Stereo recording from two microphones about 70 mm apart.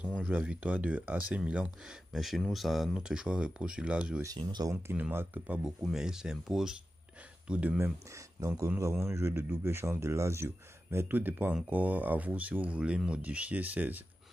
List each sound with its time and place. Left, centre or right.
0.2 s speech: centre
2.1 s speech: centre
3.0 s speech: centre
4.4 s speech: right
5.1 s speech: right
5.9 s speech: centre
8.4 s speech: right